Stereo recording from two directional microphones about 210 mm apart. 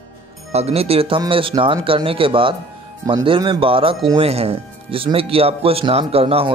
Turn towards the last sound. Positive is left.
turn(degrees=-25)  # may be behind; listen again after turning